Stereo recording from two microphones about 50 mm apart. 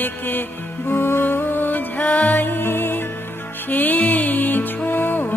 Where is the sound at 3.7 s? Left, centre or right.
Left.